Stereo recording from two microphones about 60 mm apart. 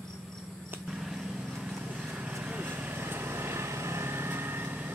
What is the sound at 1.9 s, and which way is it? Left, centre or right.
Vehicle, right.